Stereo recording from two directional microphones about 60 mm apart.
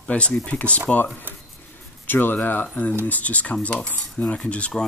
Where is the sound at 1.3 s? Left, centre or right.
Right.